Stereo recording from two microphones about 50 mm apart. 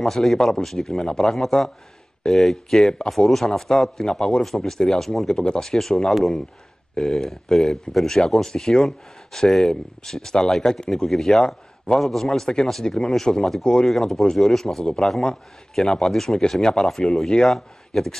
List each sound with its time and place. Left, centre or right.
0.0 s speech: centre
12.0 s speech: centre
12.3 s speech: centre